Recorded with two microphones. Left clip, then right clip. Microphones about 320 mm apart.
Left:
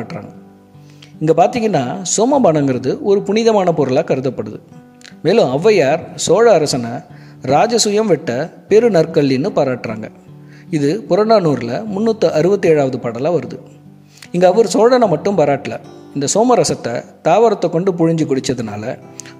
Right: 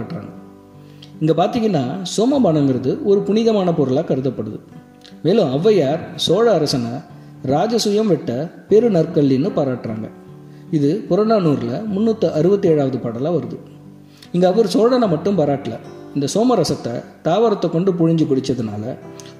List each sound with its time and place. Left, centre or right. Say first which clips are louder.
1.2 s speech: left 4 dB; left